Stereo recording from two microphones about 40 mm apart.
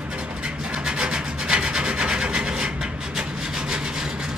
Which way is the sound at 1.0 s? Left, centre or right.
Right.